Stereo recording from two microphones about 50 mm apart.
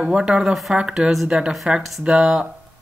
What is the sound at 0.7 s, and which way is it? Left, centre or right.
Speech, centre.